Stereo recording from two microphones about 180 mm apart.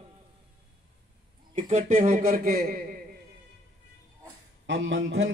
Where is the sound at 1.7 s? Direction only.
45° right (ahead or behind).